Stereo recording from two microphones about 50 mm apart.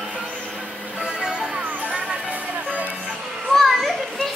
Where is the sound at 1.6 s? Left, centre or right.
Right.